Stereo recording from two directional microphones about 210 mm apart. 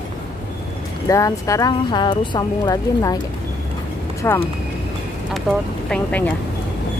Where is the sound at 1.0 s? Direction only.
15° left (ahead or behind).